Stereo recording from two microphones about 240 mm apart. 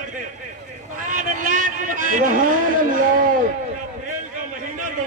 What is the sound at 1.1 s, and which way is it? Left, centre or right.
A man's voice, right.